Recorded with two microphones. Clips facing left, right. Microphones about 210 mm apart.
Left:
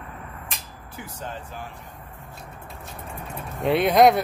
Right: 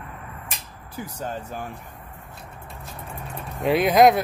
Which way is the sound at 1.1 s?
45° right (ahead or behind).